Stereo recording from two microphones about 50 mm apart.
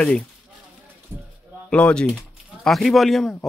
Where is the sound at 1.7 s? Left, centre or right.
Left.